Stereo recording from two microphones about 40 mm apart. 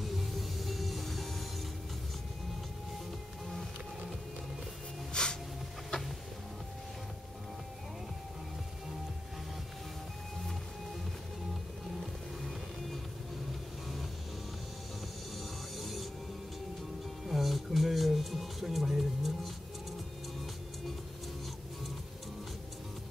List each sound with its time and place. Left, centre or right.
0.0 s music: centre
5.1 s snort: centre
5.9 s music: centre
15.8 s music: centre
17.3 s music: centre